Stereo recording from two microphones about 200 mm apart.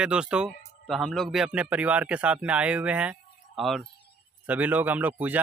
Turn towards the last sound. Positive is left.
turn(degrees=-10)  # may be behind; listen again after turning